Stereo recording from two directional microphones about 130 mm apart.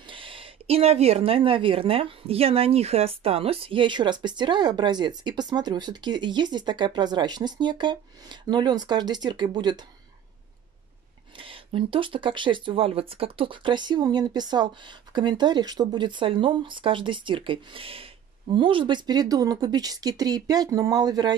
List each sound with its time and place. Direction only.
0.0 s speech: 40° right (ahead or behind)
11.3 s speech: 45° right (ahead or behind)